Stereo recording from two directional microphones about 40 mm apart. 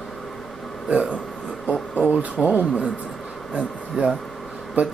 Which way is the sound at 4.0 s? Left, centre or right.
Right.